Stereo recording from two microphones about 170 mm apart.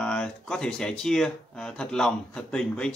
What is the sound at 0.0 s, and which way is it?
Speech, 5° left (ahead or behind).